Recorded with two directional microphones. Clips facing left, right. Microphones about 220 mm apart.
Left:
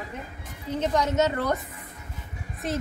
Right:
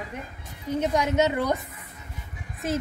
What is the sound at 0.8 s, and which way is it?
Speech, 10° right (ahead or behind).